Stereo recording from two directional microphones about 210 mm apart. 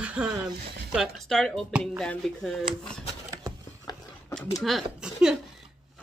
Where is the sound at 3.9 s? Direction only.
20° left (ahead or behind).